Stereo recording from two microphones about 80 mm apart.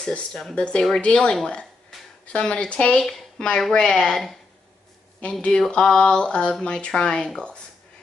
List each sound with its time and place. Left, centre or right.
0.0 s speech: centre
1.0 s speech: centre